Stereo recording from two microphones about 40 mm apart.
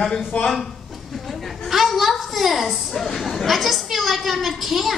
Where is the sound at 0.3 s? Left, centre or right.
Left.